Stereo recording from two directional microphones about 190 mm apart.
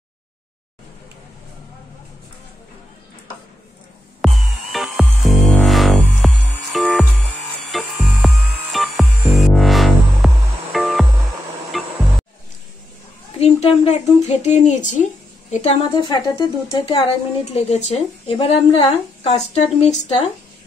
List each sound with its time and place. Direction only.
4.2 s music: centre (ahead or behind)
13.4 s a woman's voice: 35° left (ahead or behind)
17.5 s a woman's voice: 35° left (ahead or behind)